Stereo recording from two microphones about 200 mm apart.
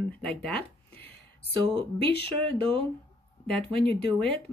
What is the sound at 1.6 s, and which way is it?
Speech, 25° right (ahead or behind).